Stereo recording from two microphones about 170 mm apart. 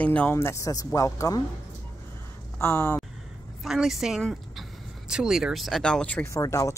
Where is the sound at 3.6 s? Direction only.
Centre (ahead or behind).